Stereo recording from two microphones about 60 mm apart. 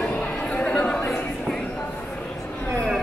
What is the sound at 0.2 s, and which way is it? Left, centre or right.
Chatter, centre.